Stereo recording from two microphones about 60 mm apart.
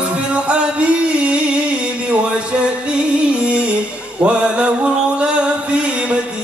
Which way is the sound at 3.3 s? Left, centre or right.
Centre.